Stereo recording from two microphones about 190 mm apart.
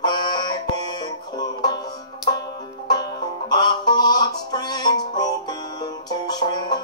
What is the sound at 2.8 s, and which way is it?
Music, 20° left (ahead or behind).